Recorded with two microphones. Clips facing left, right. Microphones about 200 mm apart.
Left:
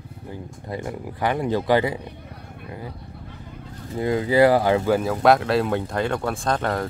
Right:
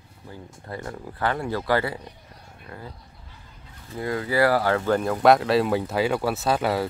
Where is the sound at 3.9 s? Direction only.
20° left (ahead or behind).